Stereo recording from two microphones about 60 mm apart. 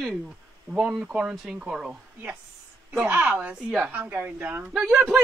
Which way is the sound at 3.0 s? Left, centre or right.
Right.